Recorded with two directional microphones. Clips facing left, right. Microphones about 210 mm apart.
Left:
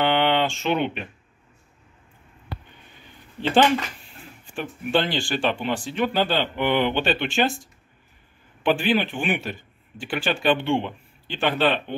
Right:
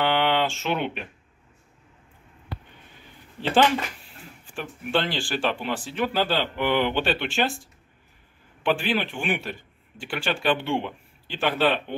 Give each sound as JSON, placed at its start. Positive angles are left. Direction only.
{"t": 0.0, "sound": "a sound", "side_deg": -5}
{"t": 3.3, "sound": "a man's voice", "side_deg": -5}
{"t": 8.6, "sound": "a man's voice", "side_deg": 0}